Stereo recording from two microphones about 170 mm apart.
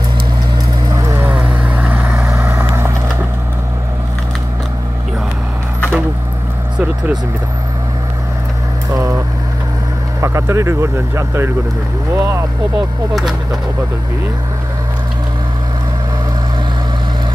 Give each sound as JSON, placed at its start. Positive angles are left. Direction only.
{"t": 0.8, "sound": "vehicle", "side_deg": -20}
{"t": 8.9, "sound": "vehicle", "side_deg": -20}
{"t": 10.2, "sound": "speech", "side_deg": -15}